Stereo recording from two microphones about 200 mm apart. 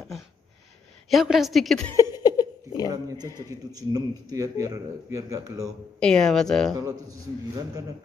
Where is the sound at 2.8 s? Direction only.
20° right (ahead or behind).